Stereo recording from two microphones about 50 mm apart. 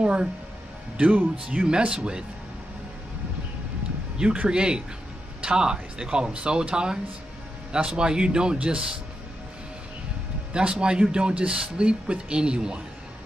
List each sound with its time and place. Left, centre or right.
0.0 s music: right
0.9 s speech: right
4.5 s speech: centre
10.5 s speech: centre